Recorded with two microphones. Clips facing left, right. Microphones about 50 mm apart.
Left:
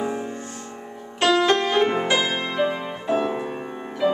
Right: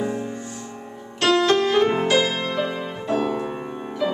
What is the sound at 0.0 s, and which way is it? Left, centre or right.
Music, centre.